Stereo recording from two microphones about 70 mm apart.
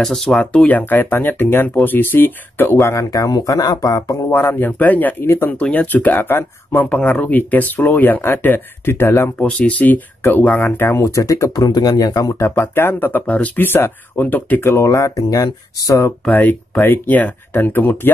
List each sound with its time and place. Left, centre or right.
0.0 s speech: centre
0.4 s speech: centre; by 4.2 s left
4.3 s speech: left
5.6 s speech: left
9.4 s speech: centre
11.0 s speech: left
11.5 s speech: left
14.6 s speech: left
14.9 s speech: left
16.3 s speech: left